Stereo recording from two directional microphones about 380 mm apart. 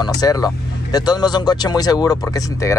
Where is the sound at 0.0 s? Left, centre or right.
Centre.